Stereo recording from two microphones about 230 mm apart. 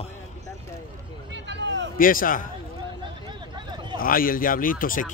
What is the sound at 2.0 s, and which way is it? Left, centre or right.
Speech, left.